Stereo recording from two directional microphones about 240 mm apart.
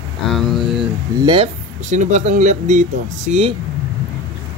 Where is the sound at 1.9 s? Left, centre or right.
Right.